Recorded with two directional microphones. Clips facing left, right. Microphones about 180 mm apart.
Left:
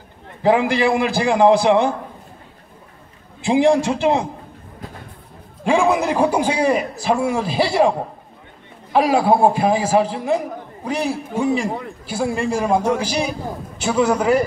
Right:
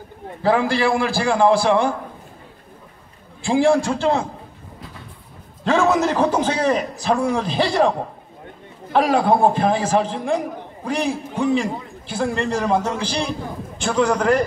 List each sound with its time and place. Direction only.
0.4 s a man's voice: 15° left (ahead or behind)
3.4 s a man's voice: 20° left (ahead or behind)
5.6 s a man's voice: 10° left (ahead or behind)
8.9 s a man's voice: 5° left (ahead or behind)